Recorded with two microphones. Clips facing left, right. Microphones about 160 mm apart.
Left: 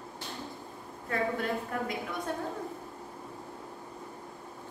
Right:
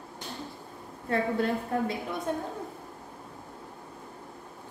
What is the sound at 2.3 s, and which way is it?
Speech, 20° right (ahead or behind).